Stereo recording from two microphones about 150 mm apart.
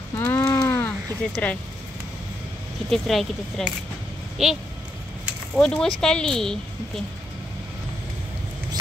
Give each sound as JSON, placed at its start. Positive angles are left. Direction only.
{"t": 0.1, "sound": "a sound", "side_deg": 15}
{"t": 1.3, "sound": "speech", "side_deg": 10}
{"t": 2.9, "sound": "speech", "side_deg": 0}
{"t": 5.6, "sound": "speech", "side_deg": 5}